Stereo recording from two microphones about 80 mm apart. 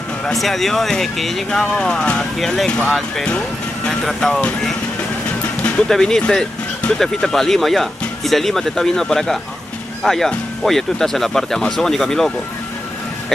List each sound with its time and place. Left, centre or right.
0.2 s speech: centre
5.6 s music: centre
5.9 s speech: centre